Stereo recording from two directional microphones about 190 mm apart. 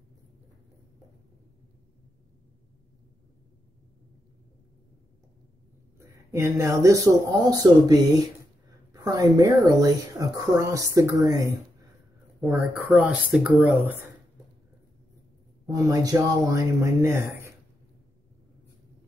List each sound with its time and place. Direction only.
5.9 s speech: 15° right (ahead or behind)
12.4 s speech: centre (ahead or behind)
15.6 s speech: 20° right (ahead or behind)